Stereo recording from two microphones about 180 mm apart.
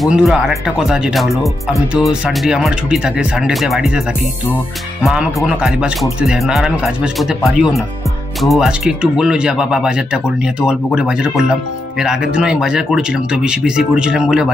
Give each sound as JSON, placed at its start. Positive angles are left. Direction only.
{"t": 0.0, "sound": "speech", "side_deg": 0}
{"t": 5.0, "sound": "speech", "side_deg": -5}